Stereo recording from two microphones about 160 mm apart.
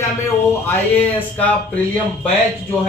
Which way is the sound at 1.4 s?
10° left (ahead or behind).